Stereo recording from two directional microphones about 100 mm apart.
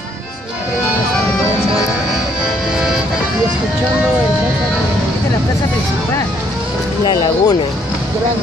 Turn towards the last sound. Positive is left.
turn(degrees=45)  # may be behind; listen again after turning